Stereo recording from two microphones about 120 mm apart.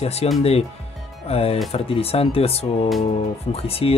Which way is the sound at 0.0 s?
60° left (ahead or behind).